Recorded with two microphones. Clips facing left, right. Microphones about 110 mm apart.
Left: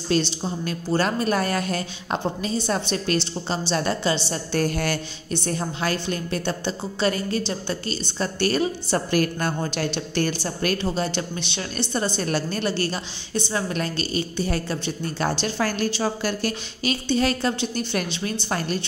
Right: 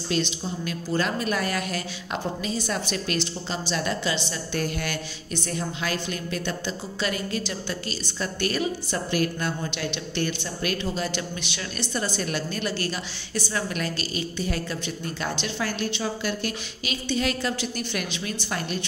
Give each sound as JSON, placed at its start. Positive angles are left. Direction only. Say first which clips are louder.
{"t": 0.1, "sound": "a woman's voice", "louder": "left 4 dB", "side_deg": 35}
{"t": 18.5, "sound": "a woman's voice", "louder": "left 4 dB", "side_deg": 40}